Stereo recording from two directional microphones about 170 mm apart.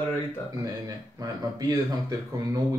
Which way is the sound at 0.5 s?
20° right (ahead or behind).